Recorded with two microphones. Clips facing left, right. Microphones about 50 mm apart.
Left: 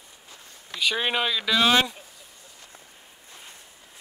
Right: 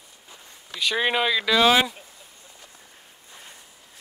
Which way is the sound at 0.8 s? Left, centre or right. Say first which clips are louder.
Right 2 dB; centre.